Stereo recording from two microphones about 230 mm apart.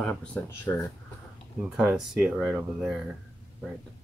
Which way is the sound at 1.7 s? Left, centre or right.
Centre.